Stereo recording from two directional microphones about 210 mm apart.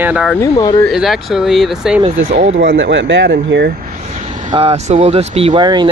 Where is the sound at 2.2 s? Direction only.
45° right (ahead or behind).